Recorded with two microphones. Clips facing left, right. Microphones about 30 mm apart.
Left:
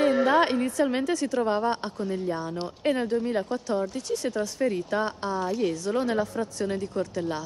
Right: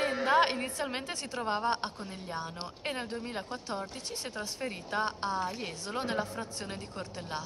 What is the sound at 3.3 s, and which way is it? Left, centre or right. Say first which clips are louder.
Speech: left 11 dB; centre.